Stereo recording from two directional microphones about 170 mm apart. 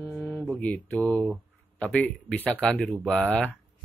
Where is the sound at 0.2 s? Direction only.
15° left (ahead or behind).